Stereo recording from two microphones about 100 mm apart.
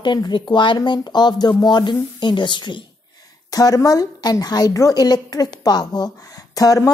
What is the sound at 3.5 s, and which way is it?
A woman's voice, 35° left (ahead or behind).